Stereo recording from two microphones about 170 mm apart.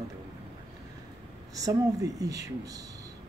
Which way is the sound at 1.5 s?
20° right (ahead or behind).